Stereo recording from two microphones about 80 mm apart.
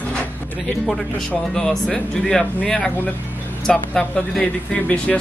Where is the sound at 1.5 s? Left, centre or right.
Centre.